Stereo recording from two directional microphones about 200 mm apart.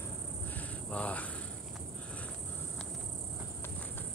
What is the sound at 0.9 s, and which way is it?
Cricket, 5° left (ahead or behind).